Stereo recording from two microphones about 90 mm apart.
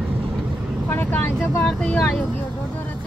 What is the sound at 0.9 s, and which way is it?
Speech, 25° left (ahead or behind).